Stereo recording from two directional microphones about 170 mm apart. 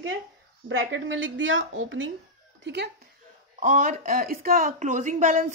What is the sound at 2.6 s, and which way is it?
Speech, 80° right.